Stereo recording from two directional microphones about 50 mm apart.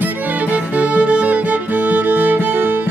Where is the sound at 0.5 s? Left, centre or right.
Right.